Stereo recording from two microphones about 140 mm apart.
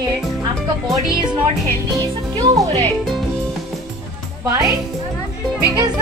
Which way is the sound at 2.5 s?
25° right (ahead or behind).